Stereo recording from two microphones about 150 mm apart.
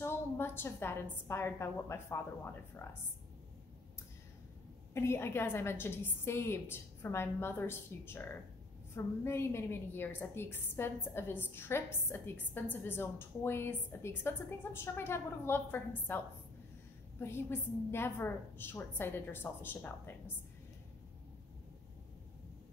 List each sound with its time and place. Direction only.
0.0 s a sound: 15° left (ahead or behind)
1.2 s a woman's voice: 15° left (ahead or behind)
4.9 s a woman's voice: 15° left (ahead or behind)
17.2 s a woman's voice: 15° left (ahead or behind)